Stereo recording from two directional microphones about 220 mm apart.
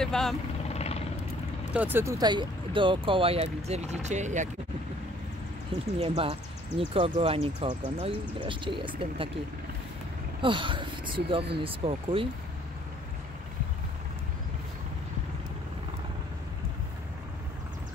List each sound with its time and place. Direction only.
0.0 s speech: centre (ahead or behind)
0.7 s vehicle: 30° left (ahead or behind)
1.7 s speech: 10° right (ahead or behind); by 4.5 s 35° right (ahead or behind)
5.9 s speech: 25° right (ahead or behind)
10.4 s speech: 20° right (ahead or behind)